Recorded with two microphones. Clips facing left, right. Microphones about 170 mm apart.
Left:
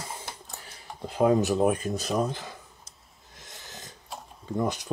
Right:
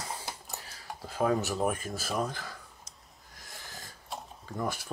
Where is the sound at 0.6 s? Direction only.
20° left (ahead or behind).